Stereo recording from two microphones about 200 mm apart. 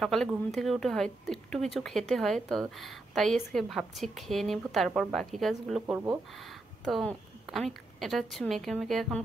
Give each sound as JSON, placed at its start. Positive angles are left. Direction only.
{"t": 0.0, "sound": "a woman's voice", "side_deg": 0}